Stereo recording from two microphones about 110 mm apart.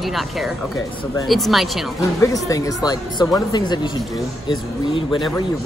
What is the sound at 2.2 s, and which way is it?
Speech, 30° left (ahead or behind).